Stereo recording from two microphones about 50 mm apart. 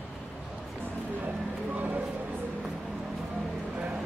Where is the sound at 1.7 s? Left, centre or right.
Right.